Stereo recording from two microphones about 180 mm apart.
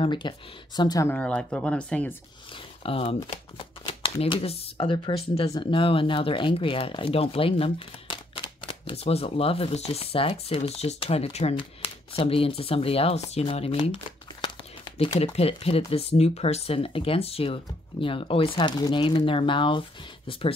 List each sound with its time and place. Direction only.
0.0 s speech: 25° left (ahead or behind)
1.1 s speech: 5° left (ahead or behind)
2.5 s speech: 30° left (ahead or behind)
14.4 s a sound: 25° left (ahead or behind)
15.9 s speech: 35° left (ahead or behind)